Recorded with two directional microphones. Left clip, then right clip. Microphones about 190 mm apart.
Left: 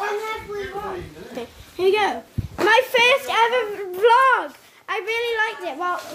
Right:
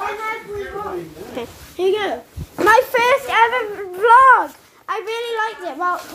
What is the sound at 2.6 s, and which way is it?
Speech, 5° left (ahead or behind).